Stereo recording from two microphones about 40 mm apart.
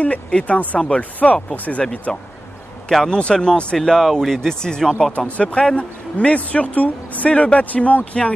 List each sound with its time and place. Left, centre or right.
0.0 s speech: left
0.7 s speech: left
1.2 s speech: left
3.1 s speech: left
3.7 s speech: centre
4.4 s speech: centre; by 7.2 s left
7.2 s speech: left